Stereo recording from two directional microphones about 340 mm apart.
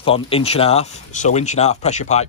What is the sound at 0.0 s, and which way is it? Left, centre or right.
Speech, centre.